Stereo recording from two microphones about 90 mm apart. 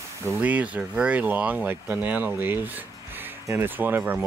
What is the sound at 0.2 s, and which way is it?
Speech, 20° right (ahead or behind).